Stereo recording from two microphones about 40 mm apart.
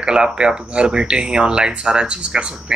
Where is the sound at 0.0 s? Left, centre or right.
Right.